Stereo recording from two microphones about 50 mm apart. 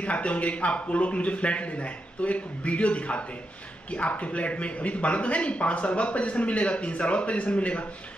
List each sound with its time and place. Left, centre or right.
0.0 s speech: left